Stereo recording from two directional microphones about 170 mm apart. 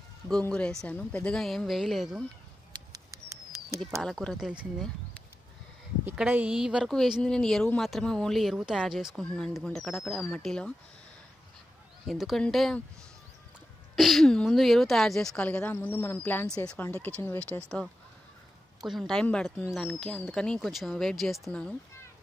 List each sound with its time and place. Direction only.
0.3 s a woman's voice: 5° left (ahead or behind)
2.7 s a sound: 25° right (ahead or behind)
4.0 s a woman's voice: centre (ahead or behind)
6.0 s a woman's voice: 10° right (ahead or behind)
12.1 s a woman's voice: centre (ahead or behind)
13.9 s a woman's voice: centre (ahead or behind)
18.9 s a woman's voice: centre (ahead or behind)